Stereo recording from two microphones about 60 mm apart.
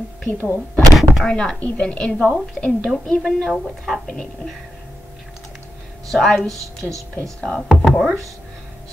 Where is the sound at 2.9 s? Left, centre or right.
Centre.